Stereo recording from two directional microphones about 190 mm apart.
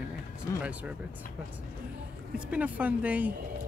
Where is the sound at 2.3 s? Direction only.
5° right (ahead or behind).